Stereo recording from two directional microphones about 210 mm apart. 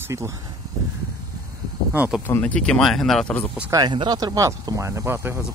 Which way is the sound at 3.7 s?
20° right (ahead or behind).